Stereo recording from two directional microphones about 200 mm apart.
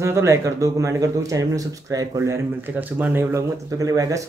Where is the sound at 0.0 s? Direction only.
15° right (ahead or behind).